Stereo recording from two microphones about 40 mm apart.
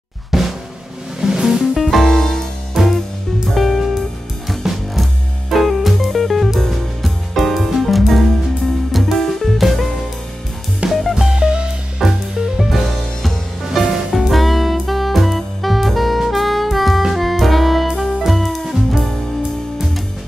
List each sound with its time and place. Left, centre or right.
0.3 s drum: centre
1.2 s music: centre
1.8 s music: centre
2.8 s music: centre
10.9 s music: centre
11.3 s music: right
12.0 s music: centre
14.2 s saxophone: centre
17.1 s music: centre